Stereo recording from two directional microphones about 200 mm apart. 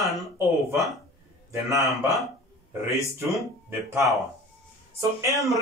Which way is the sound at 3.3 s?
15° right (ahead or behind).